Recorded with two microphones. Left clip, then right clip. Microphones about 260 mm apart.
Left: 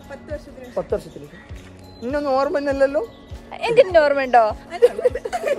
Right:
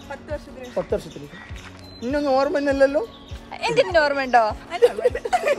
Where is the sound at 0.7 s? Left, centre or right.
Right.